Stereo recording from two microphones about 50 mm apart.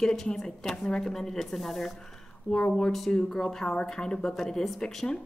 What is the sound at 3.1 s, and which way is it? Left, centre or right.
A woman's voice, centre.